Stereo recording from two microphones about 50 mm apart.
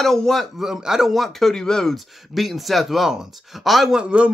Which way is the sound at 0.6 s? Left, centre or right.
Centre.